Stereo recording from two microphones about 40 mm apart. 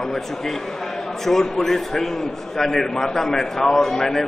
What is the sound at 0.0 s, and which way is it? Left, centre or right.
A man's voice, centre.